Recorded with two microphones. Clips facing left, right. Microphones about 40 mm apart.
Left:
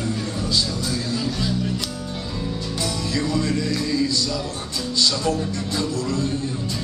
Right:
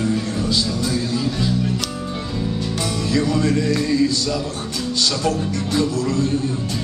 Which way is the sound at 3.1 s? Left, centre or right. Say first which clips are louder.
Right 6 dB; right.